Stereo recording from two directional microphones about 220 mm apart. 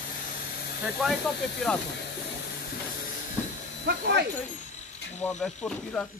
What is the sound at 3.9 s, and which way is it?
Speech, 50° right (ahead or behind).